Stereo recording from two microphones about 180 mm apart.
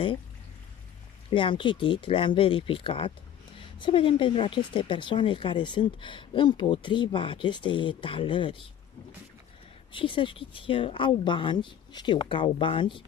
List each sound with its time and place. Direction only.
1.3 s speech: 25° left (ahead or behind)
9.9 s speech: 30° left (ahead or behind)